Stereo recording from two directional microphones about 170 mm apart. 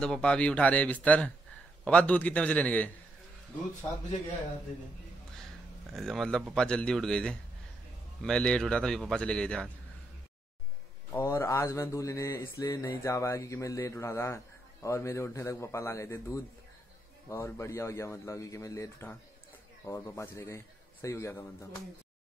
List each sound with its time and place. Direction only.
0.0 s speech: 5° left (ahead or behind)
5.9 s a man's voice: centre (ahead or behind)
11.1 s speech: 15° left (ahead or behind)